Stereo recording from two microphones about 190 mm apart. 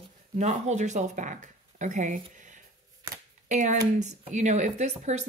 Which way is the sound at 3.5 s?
40° right (ahead or behind).